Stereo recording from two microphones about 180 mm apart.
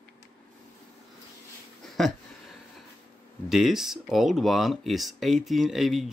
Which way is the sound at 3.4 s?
Centre (ahead or behind).